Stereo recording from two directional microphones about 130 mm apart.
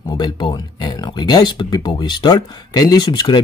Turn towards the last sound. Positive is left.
turn(degrees=35)  # may be behind; listen again after turning